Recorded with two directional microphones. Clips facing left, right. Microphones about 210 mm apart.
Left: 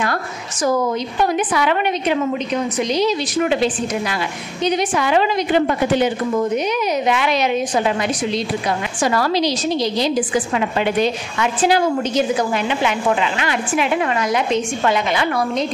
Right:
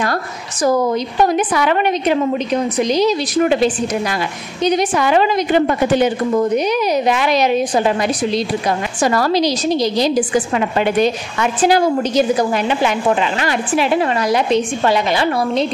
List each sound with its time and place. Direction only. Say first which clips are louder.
0.0 s a woman's voice: right 2 dB; 40° right (ahead or behind)